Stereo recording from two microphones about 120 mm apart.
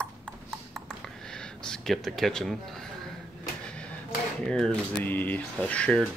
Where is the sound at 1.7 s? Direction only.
5° left (ahead or behind).